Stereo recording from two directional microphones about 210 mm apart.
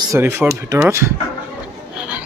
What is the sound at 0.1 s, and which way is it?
Speech, 10° right (ahead or behind).